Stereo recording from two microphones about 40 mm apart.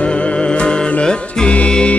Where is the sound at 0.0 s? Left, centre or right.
Left.